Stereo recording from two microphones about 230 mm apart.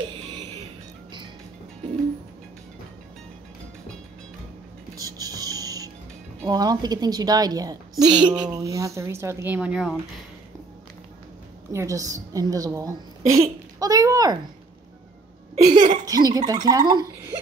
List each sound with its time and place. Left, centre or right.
4.9 s music: centre
6.4 s a woman's voice: centre
11.7 s a woman's voice: centre
15.5 s a woman's voice: right